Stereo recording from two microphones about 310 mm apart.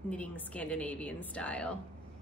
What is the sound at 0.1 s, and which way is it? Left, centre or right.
A woman's voice, centre.